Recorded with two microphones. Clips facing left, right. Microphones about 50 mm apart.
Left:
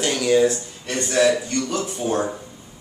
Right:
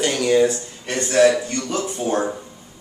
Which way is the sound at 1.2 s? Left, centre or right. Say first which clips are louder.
Right 3 dB; right.